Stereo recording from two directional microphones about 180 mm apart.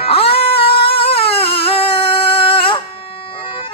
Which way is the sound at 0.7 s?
30° left (ahead or behind).